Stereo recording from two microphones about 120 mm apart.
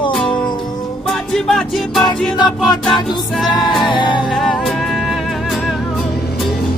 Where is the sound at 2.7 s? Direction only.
35° left (ahead or behind).